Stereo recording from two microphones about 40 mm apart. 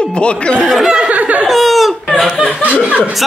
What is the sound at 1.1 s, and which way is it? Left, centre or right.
Laughter, right.